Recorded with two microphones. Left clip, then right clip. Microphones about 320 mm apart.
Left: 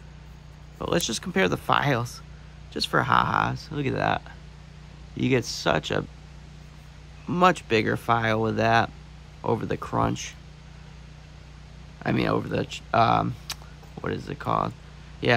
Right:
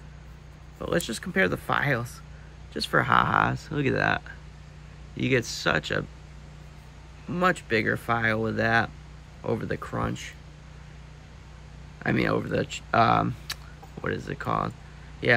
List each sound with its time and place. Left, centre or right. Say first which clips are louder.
0.7 s speech: left 2 dB; centre
7.2 s speech: left 4 dB; centre
12.0 s speech: even; centre